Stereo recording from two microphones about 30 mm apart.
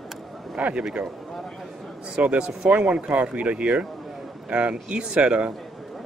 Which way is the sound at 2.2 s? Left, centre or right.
Right.